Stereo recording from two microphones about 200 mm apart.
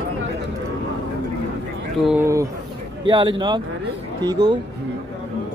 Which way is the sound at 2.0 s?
10° right (ahead or behind).